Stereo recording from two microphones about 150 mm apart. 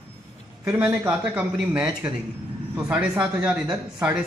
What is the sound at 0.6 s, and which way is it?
A man's voice, 10° right (ahead or behind).